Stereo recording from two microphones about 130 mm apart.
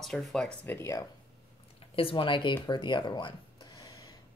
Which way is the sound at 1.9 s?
45° left (ahead or behind).